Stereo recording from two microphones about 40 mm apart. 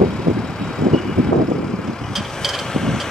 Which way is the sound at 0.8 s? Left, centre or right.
Centre.